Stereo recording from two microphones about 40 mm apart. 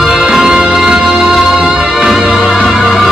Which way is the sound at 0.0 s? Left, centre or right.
Centre.